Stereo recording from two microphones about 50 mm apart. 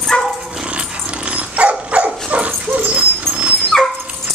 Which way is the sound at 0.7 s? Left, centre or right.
Right.